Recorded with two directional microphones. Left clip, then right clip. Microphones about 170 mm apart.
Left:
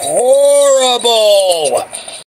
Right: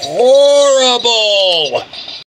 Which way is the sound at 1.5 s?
40° left (ahead or behind).